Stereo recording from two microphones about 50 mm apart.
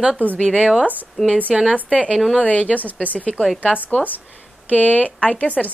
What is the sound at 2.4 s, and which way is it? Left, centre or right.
Speech, left.